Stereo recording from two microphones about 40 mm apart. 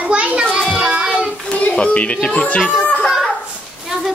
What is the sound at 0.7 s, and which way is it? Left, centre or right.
Child singing, centre.